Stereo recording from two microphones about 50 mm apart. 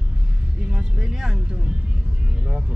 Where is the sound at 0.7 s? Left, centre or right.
Centre.